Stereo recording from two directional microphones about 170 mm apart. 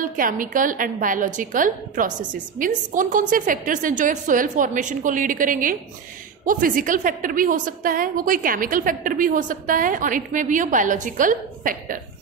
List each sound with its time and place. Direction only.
0.0 s a woman's voice: 50° right (ahead or behind)